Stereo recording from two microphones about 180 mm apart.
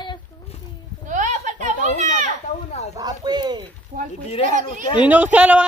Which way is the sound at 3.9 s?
45° right (ahead or behind).